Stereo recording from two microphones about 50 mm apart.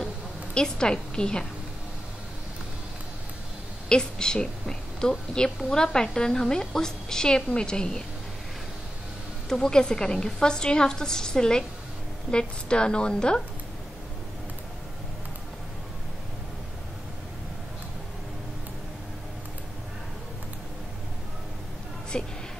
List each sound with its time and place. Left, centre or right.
0.6 s a woman's voice: centre
3.9 s a woman's voice: centre
9.5 s a woman's voice: centre
22.1 s a sound: centre